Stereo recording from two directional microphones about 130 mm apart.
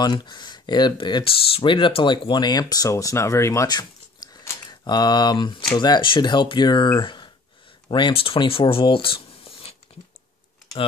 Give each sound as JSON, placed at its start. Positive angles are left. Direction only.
{"t": 0.0, "sound": "speech", "side_deg": 35}